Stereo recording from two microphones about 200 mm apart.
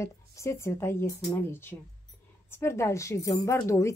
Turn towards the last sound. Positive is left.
turn(degrees=15)  # may be behind; listen again after turning